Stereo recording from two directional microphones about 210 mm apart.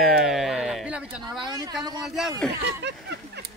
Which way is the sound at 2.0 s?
Centre (ahead or behind).